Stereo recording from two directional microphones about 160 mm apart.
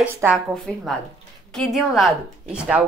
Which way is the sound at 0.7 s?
5° left (ahead or behind).